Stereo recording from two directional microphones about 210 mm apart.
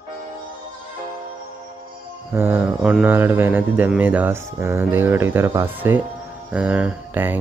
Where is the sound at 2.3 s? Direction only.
10° right (ahead or behind).